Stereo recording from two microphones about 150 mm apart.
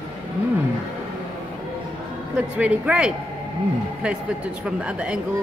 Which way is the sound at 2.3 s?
10° right (ahead or behind).